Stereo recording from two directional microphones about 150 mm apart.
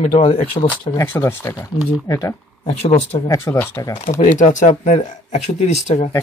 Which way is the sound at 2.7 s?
50° left (ahead or behind).